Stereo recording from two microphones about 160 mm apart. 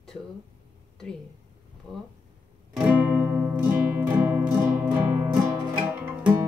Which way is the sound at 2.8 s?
10° right (ahead or behind).